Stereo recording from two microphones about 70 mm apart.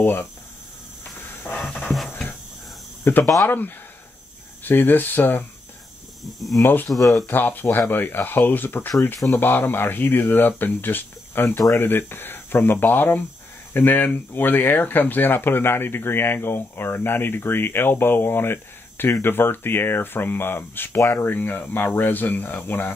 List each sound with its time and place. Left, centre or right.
0.0 s speech: left
1.5 s music: centre
1.9 s music: centre
3.0 s snake: left
3.4 s speech: left
6.6 s speech: left
7.0 s speech: left
7.2 s speech: left